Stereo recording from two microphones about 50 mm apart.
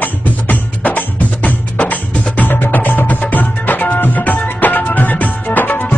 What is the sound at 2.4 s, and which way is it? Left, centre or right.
Music, left.